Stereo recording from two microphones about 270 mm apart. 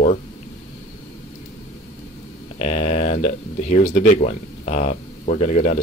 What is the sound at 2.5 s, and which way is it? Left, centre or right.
Speech, left.